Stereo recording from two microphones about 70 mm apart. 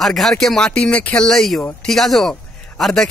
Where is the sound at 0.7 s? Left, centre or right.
Centre.